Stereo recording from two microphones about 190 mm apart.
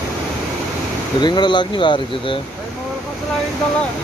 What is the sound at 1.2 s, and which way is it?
Speech, 25° left (ahead or behind).